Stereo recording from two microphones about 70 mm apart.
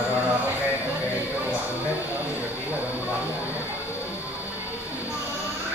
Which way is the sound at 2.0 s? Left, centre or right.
Right.